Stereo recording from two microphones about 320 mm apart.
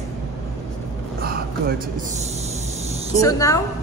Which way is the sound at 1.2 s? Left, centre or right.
Right.